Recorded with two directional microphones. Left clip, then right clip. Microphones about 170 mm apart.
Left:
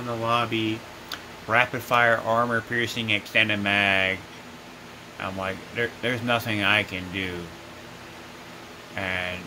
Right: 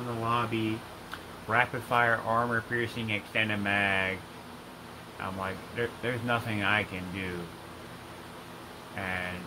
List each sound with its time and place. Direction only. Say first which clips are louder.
0.2 s speech: left 5 dB; 60° left (ahead or behind)
1.5 s speech: left 5 dB; 75° left (ahead or behind)
5.2 s speech: left 5 dB; 70° left (ahead or behind)
8.9 s speech: left 6 dB; 70° left (ahead or behind)